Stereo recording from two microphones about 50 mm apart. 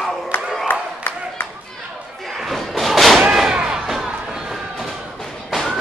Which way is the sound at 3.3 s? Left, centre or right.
Centre.